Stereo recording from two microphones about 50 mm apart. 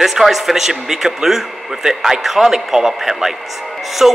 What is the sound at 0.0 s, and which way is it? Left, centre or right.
A man's voice, centre.